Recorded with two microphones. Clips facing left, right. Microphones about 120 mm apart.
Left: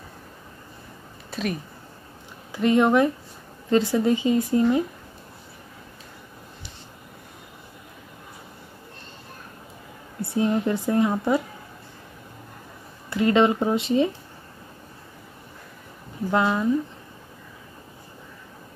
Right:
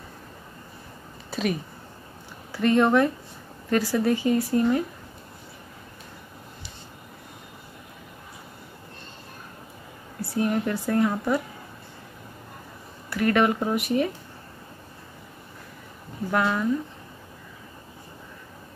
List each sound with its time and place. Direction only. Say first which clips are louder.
1.3 s a sound: right 2 dB; centre (ahead or behind)
2.5 s a woman's voice: left 1 dB; 15° left (ahead or behind)
10.2 s a woman's voice: left 2 dB; 20° left (ahead or behind)
13.1 s a woman's voice: left 3 dB; 20° left (ahead or behind)
16.3 s a woman's voice: left 2 dB; 20° left (ahead or behind)